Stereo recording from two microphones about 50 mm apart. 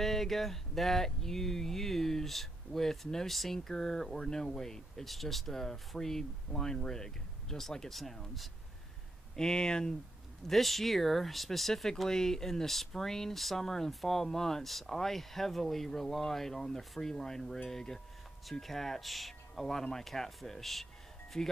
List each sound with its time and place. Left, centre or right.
0.0 s speech: centre
9.3 s speech: centre
10.5 s speech: centre